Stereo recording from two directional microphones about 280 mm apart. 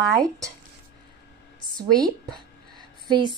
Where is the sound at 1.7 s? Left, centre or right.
Centre.